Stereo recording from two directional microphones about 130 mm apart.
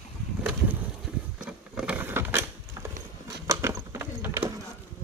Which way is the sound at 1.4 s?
10° right (ahead or behind).